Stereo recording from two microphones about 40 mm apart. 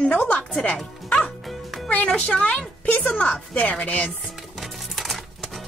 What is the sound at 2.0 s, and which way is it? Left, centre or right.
Speech, left.